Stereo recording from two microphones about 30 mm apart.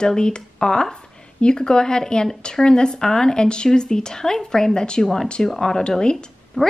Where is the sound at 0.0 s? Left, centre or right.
Left.